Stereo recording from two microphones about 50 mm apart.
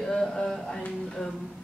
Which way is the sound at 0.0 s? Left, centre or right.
Centre.